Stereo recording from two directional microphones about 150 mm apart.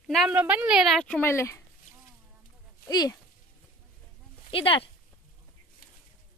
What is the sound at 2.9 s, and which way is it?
Speech, 25° left (ahead or behind).